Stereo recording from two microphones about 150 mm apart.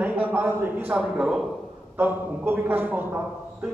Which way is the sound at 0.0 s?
10° right (ahead or behind).